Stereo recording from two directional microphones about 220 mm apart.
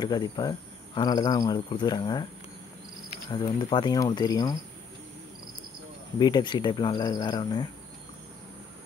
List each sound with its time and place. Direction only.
0.0 s speech: 20° left (ahead or behind)
3.3 s speech: 20° left (ahead or behind)
6.1 s speech: 20° left (ahead or behind)